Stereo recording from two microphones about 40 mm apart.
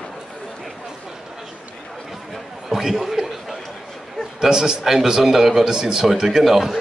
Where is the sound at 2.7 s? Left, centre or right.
Centre.